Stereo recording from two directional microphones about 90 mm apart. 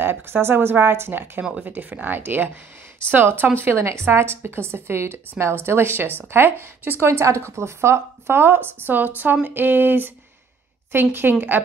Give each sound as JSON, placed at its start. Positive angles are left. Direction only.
{"t": 0.0, "sound": "speech", "side_deg": -25}
{"t": 1.4, "sound": "speech", "side_deg": -10}